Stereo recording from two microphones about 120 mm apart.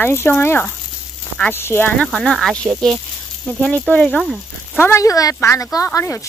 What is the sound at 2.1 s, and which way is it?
Speech, centre (ahead or behind).